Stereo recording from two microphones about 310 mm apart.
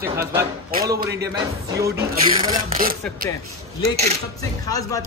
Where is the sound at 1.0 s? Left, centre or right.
Right.